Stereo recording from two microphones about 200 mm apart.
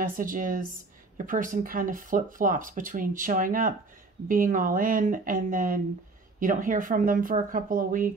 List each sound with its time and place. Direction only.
0.0 s speech: 45° right (ahead or behind)